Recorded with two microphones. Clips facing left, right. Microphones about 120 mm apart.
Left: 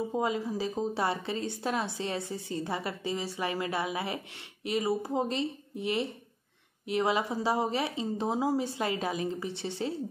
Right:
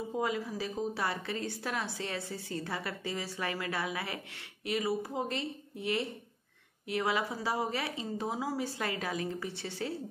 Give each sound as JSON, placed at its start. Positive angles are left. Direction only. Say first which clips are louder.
{"t": 0.1, "sound": "a woman's voice", "louder": "left 3 dB", "side_deg": 25}